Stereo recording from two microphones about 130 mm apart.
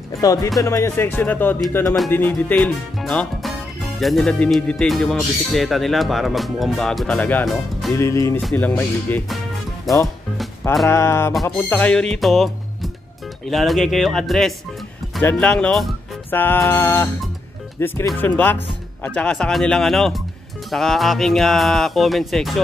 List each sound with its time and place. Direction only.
0.2 s music: 25° left (ahead or behind)
0.6 s speech: 25° left (ahead or behind)
3.0 s speech: centre (ahead or behind)
7.9 s music: 25° left (ahead or behind)
8.5 s speech: 15° left (ahead or behind)
10.9 s music: 20° left (ahead or behind)
11.7 s speech: 10° left (ahead or behind)
16.3 s speech: 15° left (ahead or behind); by 22.6 s centre (ahead or behind)